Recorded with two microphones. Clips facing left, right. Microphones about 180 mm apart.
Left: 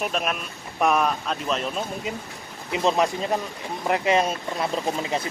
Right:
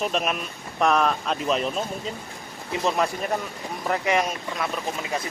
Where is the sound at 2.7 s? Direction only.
20° left (ahead or behind).